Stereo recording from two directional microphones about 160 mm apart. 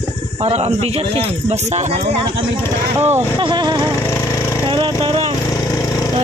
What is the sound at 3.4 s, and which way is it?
Speech, 30° right (ahead or behind).